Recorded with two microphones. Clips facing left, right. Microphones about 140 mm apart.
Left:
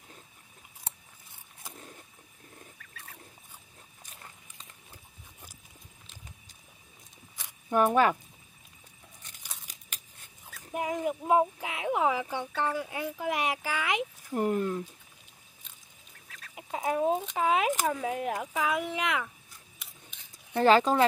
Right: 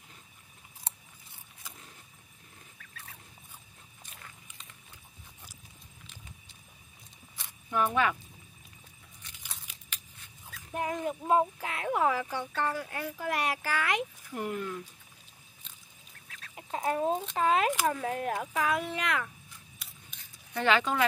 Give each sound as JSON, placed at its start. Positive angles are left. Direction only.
{"t": 7.7, "sound": "speech", "side_deg": 45}
{"t": 9.2, "sound": "tearing", "side_deg": 45}
{"t": 9.7, "sound": "a sound", "side_deg": 45}
{"t": 10.7, "sound": "speech", "side_deg": 10}
{"t": 14.3, "sound": "speech", "side_deg": 40}
{"t": 16.5, "sound": "speech", "side_deg": 10}
{"t": 20.5, "sound": "speech", "side_deg": 35}